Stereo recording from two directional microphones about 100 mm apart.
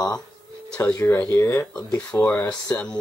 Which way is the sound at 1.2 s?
25° left (ahead or behind).